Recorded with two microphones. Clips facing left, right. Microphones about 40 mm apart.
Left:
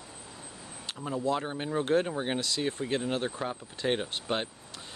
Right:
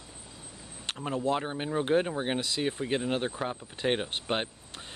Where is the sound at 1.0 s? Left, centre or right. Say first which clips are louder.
Right 1 dB; right.